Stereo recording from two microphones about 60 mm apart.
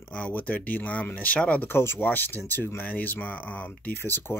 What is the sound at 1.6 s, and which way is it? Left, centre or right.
Speech, left.